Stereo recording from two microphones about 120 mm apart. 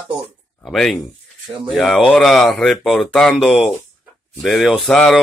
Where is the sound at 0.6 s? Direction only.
Centre (ahead or behind).